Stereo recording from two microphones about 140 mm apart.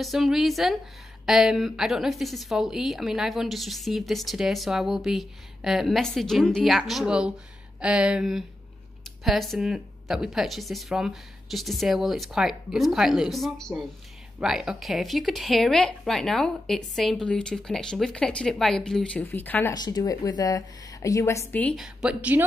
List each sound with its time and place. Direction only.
0.0 s a woman's voice: centre (ahead or behind)
19.7 s speech: 30° left (ahead or behind); by 21.7 s 10° left (ahead or behind)
21.7 s a woman's voice: 5° right (ahead or behind)